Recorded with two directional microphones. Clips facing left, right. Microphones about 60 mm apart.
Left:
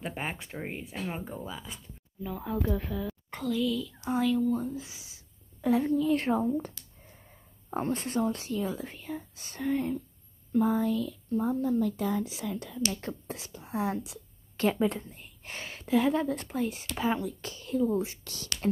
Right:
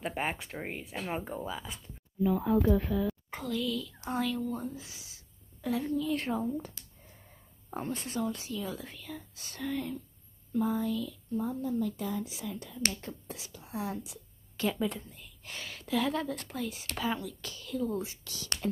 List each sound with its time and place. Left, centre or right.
0.0 s speech: centre
2.2 s speech: right
3.1 s a woman's voice: centre
4.8 s a sound: centre
5.7 s a woman's voice: left
7.7 s speech: left
8.6 s speech: left
10.5 s speech: left
13.5 s a woman's voice: left
18.0 s speech: left